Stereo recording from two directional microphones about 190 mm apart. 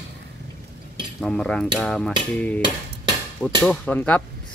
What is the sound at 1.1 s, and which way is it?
Speech, 5° left (ahead or behind).